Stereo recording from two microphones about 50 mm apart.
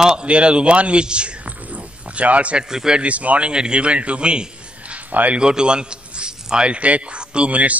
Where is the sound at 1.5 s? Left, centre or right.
Right.